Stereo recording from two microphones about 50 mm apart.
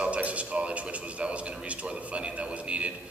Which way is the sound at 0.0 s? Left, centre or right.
Right.